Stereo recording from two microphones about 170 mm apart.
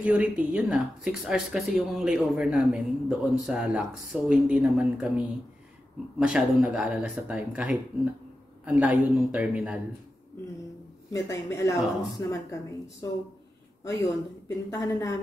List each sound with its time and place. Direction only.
0.0 s a man's voice: 5° right (ahead or behind)
11.1 s speech: 20° left (ahead or behind)
14.7 s speech: 20° left (ahead or behind)